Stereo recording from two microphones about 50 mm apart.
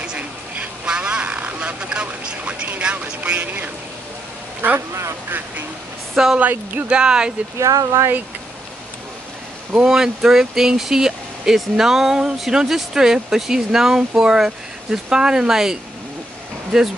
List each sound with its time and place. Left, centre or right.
0.0 s a sound: centre
0.8 s vehicle: centre
2.8 s speech: right
3.2 s speech: right
4.7 s speech: right
6.2 s speech: centre
6.5 s speech: right
6.9 s speech: centre
7.5 s speech: right
9.8 s speech: centre